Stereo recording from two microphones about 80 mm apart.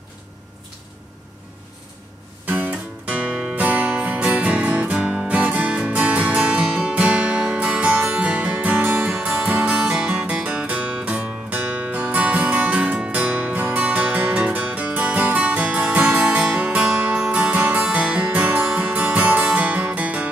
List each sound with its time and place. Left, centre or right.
2.4 s music: right